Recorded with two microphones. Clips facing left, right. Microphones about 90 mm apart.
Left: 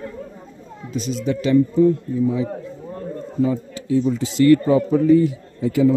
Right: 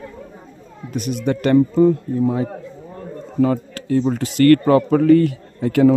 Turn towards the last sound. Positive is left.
turn(degrees=-65)  # may be behind; listen again after turning